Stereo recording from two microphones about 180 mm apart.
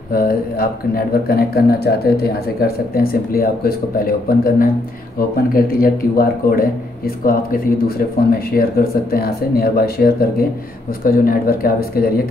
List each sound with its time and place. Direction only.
0.1 s speech: 55° left (ahead or behind)